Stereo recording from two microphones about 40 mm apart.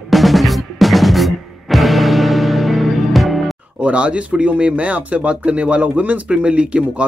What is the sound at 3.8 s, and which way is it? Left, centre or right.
Speech, right.